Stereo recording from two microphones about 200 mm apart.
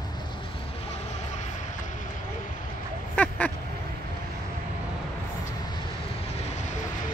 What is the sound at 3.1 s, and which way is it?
Duck, 10° left (ahead or behind).